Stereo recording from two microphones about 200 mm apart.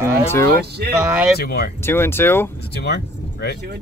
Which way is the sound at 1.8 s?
10° left (ahead or behind).